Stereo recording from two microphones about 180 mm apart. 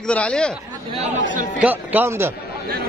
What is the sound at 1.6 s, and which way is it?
Speech, 10° right (ahead or behind).